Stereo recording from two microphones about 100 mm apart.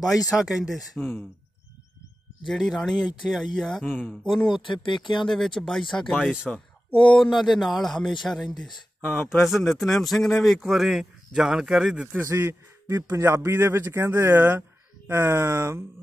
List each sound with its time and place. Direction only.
0.4 s speech: 5° right (ahead or behind)
0.9 s speech: 25° left (ahead or behind)
2.4 s speech: centre (ahead or behind)
3.9 s speech: 15° left (ahead or behind)
4.3 s speech: centre (ahead or behind)
4.6 s speech: 55° left (ahead or behind)
5.3 s speech: centre (ahead or behind)
7.2 s speech: centre (ahead or behind)
12.2 s a man's voice: 25° right (ahead or behind)